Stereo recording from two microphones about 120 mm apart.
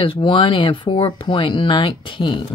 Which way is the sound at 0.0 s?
45° left (ahead or behind).